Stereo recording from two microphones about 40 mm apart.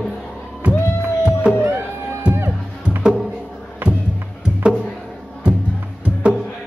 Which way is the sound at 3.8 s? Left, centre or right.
Right.